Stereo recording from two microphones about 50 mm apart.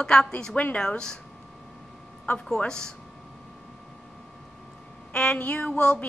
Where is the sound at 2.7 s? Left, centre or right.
Centre.